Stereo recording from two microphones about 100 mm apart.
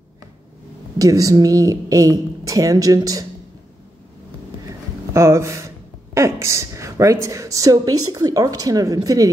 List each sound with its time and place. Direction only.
0.9 s a woman's voice: 35° right (ahead or behind)
5.1 s a woman's voice: 30° right (ahead or behind)